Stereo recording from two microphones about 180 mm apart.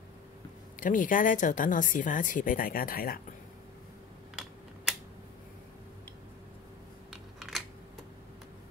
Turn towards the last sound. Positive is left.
turn(degrees=0)  # may be behind; listen again after turning